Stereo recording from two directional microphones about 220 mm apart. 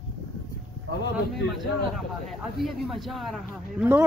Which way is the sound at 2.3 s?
Centre (ahead or behind).